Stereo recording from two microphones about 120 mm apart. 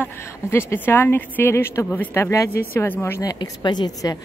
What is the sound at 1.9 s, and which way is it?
A woman's voice, 15° left (ahead or behind).